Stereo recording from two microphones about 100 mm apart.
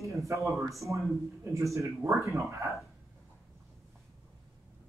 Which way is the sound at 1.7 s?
30° right (ahead or behind).